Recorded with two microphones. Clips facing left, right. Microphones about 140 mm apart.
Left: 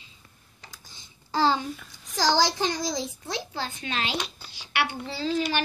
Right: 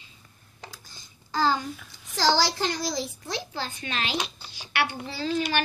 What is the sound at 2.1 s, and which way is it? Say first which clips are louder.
Speech: even; 15° left (ahead or behind).